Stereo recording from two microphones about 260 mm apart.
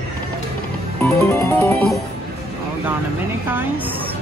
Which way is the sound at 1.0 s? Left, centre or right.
Centre.